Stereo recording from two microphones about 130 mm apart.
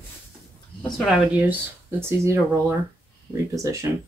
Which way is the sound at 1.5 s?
20° right (ahead or behind).